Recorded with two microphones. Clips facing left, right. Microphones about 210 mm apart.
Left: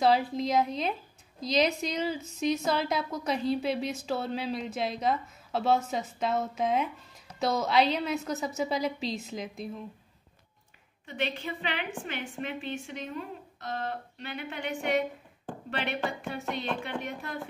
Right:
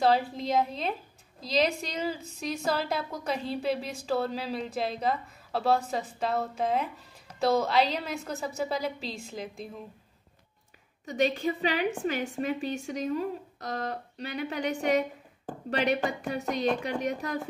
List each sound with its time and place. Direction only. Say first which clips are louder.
0.0 s a woman's voice: even; centre (ahead or behind)
11.1 s a woman's voice: right 7 dB; 40° right (ahead or behind)